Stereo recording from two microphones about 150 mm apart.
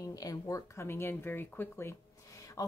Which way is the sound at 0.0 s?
25° left (ahead or behind).